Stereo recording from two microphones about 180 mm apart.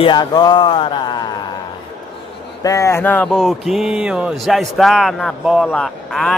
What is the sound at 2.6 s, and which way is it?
Speech, 15° left (ahead or behind).